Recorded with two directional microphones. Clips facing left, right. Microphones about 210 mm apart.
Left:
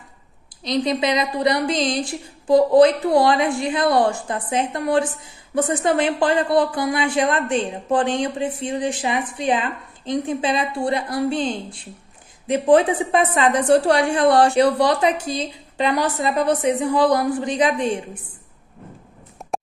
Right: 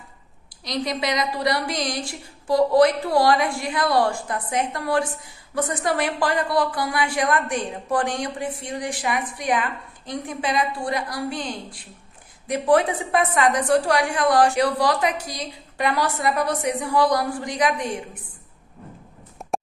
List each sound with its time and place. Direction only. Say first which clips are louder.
0.7 s a woman's voice: left 5 dB; 20° left (ahead or behind)